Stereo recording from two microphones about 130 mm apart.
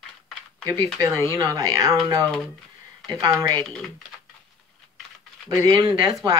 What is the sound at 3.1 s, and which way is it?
Speech, 30° right (ahead or behind).